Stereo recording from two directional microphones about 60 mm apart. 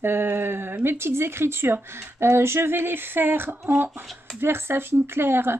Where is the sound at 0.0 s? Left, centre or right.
Right.